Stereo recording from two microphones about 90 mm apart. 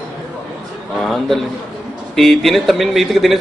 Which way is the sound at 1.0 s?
5° left (ahead or behind).